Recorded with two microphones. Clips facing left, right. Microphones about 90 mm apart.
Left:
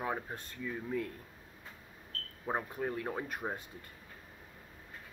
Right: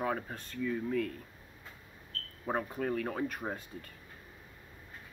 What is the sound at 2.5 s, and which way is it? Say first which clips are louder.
Speech: right 2 dB; 15° left (ahead or behind).